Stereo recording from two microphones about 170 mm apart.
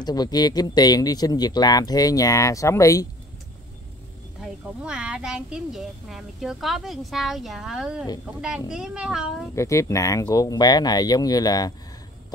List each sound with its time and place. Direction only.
0.0 s speech: 25° left (ahead or behind)
4.4 s speech: 5° right (ahead or behind)
9.6 s speech: 15° left (ahead or behind)